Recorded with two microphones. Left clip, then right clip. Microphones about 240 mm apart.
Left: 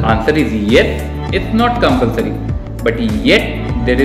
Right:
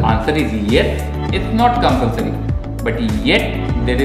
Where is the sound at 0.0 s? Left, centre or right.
Centre.